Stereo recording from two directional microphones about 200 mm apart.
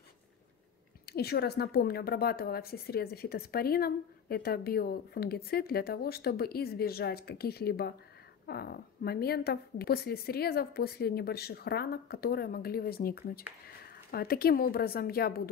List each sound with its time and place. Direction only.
1.0 s a woman's voice: 50° left (ahead or behind)